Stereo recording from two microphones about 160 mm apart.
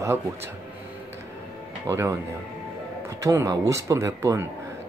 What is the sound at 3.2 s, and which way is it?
Speech, 20° right (ahead or behind).